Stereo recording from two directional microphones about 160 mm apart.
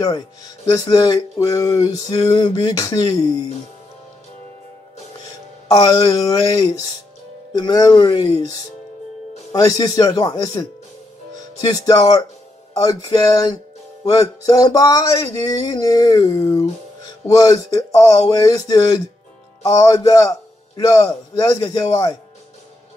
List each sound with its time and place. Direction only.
0.7 s music: 25° left (ahead or behind)
5.2 s speech: 20° left (ahead or behind)
7.5 s music: 25° left (ahead or behind)
11.3 s speech: 25° left (ahead or behind)
12.7 s music: 20° left (ahead or behind)